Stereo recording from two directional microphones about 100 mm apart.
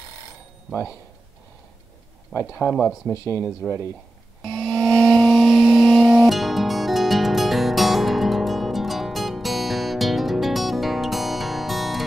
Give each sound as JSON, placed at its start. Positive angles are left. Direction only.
{"t": 2.6, "sound": "speech", "side_deg": 15}
{"t": 4.6, "sound": "music", "side_deg": 0}